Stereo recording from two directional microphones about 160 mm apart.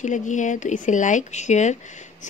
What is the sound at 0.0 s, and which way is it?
Speech, 50° left (ahead or behind).